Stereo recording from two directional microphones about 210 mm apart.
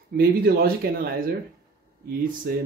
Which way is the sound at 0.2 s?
50° right (ahead or behind).